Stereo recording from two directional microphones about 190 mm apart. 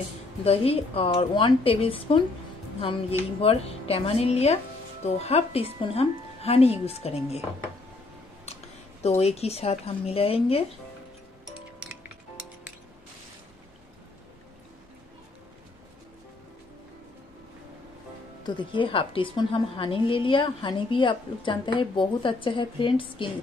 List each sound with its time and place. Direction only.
0.4 s a woman's voice: 30° left (ahead or behind)
9.0 s speech: 35° left (ahead or behind)
18.4 s a woman's voice: 25° left (ahead or behind)